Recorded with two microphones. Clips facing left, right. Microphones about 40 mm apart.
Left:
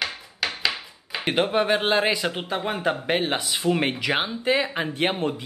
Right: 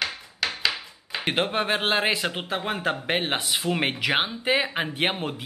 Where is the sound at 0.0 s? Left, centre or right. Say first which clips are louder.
Even; centre.